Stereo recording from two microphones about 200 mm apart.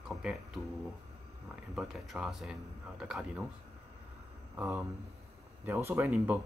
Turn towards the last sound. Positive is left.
turn(degrees=-10)  # may be behind; listen again after turning